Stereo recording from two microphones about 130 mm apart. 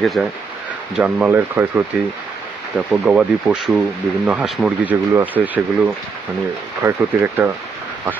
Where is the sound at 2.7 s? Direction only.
5° right (ahead or behind).